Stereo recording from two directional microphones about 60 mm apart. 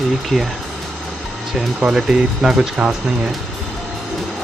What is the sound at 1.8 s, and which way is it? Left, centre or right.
Speech, centre.